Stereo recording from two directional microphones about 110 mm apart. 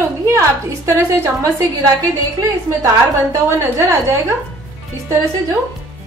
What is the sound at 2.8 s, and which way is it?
A woman's voice, 30° right (ahead or behind).